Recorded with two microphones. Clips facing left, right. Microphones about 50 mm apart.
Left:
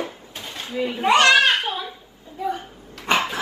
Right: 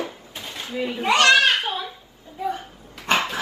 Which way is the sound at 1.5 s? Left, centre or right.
Centre.